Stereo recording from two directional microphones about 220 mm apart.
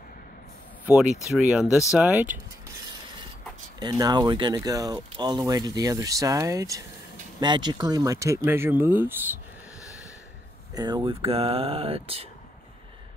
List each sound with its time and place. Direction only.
0.8 s speech: 5° right (ahead or behind)
3.8 s speech: 20° right (ahead or behind)
10.7 s speech: 20° right (ahead or behind)